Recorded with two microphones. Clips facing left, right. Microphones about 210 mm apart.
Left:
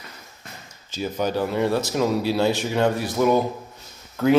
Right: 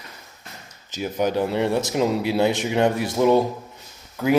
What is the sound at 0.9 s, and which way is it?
Speech, 20° right (ahead or behind).